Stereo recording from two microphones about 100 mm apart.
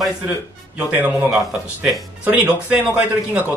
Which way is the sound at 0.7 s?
15° right (ahead or behind).